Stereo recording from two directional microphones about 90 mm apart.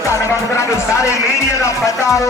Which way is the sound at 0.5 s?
35° left (ahead or behind).